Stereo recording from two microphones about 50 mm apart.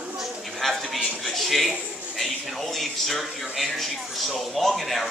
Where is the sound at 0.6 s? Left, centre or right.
Centre.